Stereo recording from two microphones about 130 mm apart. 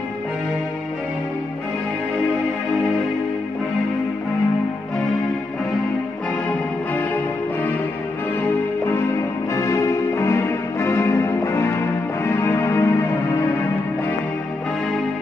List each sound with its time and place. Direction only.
8.4 s music: 20° left (ahead or behind)